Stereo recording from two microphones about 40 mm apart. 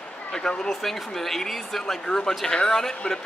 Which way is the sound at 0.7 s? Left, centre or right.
Centre.